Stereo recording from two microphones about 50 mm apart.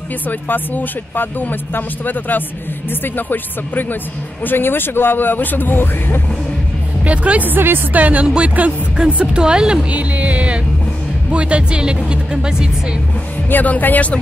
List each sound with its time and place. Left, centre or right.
0.3 s speech: left
7.1 s speech: right
7.4 s speech: right
8.0 s speech: right
8.9 s a woman's voice: centre
9.8 s a woman's voice: right
13.5 s speech: left